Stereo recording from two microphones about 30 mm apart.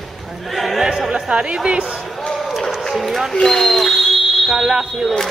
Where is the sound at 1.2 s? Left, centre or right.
Right.